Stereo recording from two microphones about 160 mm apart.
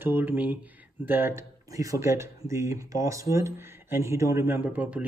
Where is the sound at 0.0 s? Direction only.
15° right (ahead or behind).